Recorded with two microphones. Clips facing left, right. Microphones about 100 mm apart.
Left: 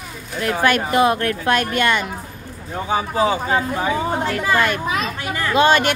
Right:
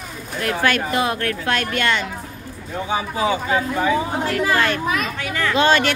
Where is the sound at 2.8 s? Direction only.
35° left (ahead or behind).